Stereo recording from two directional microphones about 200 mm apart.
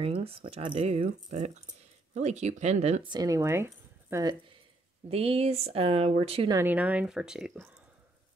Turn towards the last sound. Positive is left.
turn(degrees=-5)  # may be behind; listen again after turning